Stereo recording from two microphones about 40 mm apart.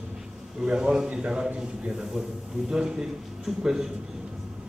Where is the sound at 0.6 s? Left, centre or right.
Centre.